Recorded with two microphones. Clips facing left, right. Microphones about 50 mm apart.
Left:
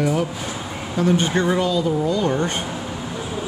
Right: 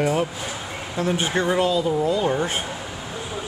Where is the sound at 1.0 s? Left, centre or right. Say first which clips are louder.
Left 3 dB; centre.